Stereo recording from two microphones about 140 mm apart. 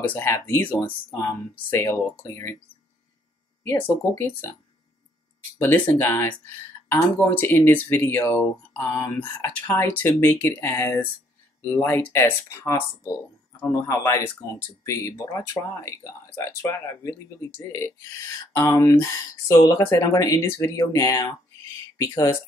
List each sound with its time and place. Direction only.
0.1 s speech: 15° left (ahead or behind)
3.6 s speech: 15° left (ahead or behind)
5.6 s speech: 15° left (ahead or behind)